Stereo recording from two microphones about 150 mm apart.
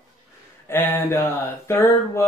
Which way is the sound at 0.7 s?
15° left (ahead or behind).